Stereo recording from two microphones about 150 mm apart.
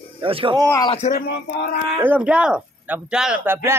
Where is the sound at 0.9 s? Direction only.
55° left (ahead or behind).